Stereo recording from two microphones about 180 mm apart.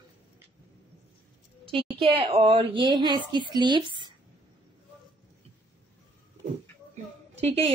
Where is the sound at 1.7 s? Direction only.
30° right (ahead or behind).